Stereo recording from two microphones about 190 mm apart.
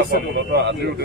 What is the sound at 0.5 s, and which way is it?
Speech, 60° right (ahead or behind).